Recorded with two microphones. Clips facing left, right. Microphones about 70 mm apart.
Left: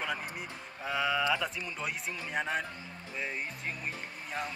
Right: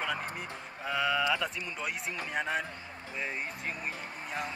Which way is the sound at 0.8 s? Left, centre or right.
Centre.